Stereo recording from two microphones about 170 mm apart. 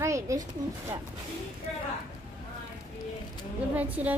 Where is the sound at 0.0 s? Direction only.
15° right (ahead or behind).